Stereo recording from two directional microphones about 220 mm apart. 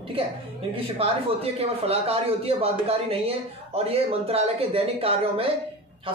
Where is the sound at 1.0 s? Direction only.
25° right (ahead or behind).